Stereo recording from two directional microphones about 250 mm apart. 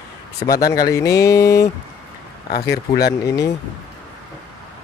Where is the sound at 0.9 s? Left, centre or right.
Centre.